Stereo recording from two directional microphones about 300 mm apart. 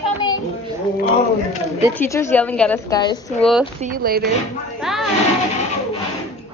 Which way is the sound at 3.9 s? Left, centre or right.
Right.